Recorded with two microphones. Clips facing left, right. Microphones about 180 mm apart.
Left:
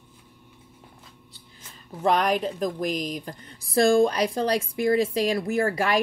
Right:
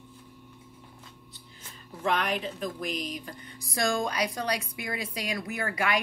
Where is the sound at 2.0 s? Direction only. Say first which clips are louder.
Left 6 dB; 40° left (ahead or behind).